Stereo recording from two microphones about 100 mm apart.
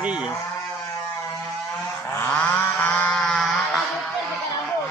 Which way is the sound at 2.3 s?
15° left (ahead or behind).